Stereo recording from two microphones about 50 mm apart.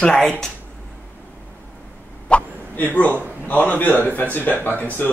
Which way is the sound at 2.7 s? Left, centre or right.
Left.